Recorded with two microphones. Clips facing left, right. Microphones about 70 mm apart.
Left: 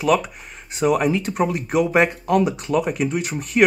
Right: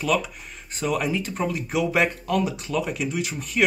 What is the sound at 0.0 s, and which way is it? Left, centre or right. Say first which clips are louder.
Speech: left 5 dB; left.